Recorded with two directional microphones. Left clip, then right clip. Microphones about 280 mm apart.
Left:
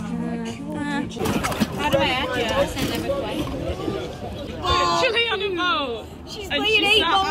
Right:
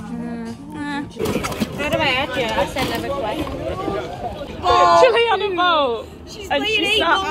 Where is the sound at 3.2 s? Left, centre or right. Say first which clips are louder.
Right 4 dB; right.